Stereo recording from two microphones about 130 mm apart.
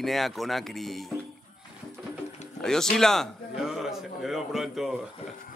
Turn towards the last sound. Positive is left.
turn(degrees=0)  # may be behind; listen again after turning